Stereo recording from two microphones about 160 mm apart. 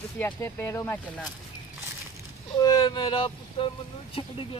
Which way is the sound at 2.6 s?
25° left (ahead or behind).